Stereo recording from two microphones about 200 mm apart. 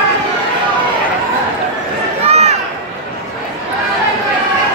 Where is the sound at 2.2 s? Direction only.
30° right (ahead or behind).